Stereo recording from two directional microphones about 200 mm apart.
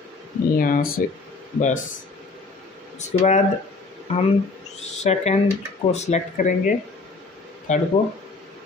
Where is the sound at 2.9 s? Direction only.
35° left (ahead or behind).